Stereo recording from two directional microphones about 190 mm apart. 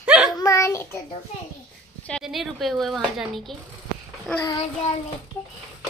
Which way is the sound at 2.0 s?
Centre (ahead or behind).